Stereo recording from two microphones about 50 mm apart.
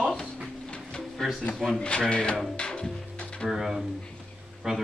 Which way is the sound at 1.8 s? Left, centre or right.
Centre.